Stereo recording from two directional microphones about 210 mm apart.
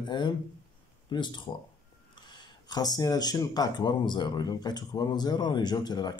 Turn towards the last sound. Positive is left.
turn(degrees=20)  # may be behind; listen again after turning